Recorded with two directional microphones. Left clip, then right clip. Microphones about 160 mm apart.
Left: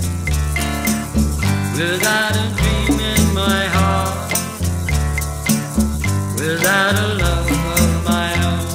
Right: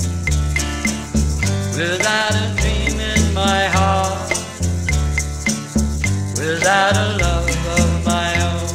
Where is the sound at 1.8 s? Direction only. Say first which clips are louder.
Even; 20° left (ahead or behind).